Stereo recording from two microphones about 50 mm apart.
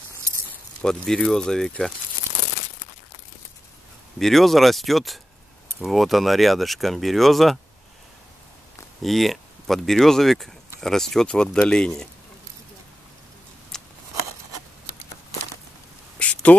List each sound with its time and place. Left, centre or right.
0.8 s speech: centre
4.2 s speech: centre
9.0 s speech: centre
13.7 s scissors: centre
16.2 s a sound: left